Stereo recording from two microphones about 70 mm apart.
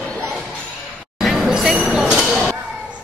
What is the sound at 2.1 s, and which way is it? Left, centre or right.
Chink, centre.